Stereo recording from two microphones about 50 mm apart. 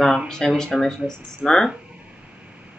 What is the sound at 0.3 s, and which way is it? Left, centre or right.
Speech, centre.